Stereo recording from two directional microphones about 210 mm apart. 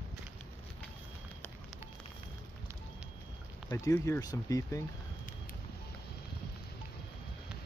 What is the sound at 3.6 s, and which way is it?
Speech, 15° left (ahead or behind).